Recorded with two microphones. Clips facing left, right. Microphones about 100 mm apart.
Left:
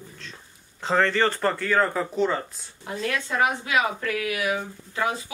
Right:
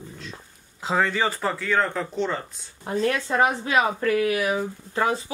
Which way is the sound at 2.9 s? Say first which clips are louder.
Right 4 dB; 35° right (ahead or behind).